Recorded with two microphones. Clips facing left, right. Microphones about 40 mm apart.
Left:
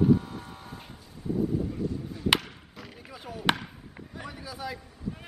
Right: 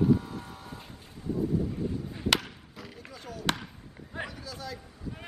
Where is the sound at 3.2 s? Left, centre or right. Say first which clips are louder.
Left 4 dB; centre.